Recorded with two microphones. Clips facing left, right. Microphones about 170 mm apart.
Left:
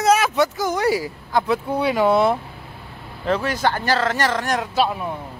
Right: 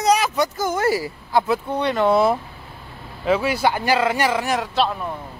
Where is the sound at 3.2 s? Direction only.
5° right (ahead or behind).